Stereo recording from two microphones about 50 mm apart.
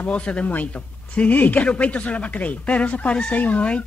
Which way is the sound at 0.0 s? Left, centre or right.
Left.